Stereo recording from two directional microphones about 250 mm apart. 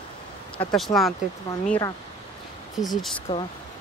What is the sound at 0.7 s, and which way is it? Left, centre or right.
Speech, centre.